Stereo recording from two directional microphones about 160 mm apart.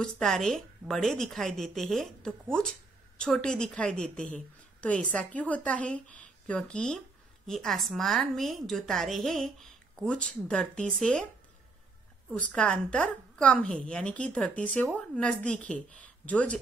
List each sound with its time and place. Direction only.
0.0 s a woman's voice: 5° left (ahead or behind)
12.4 s a woman's voice: 5° left (ahead or behind)